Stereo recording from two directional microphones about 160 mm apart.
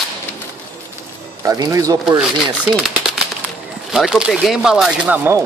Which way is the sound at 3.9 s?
5° right (ahead or behind).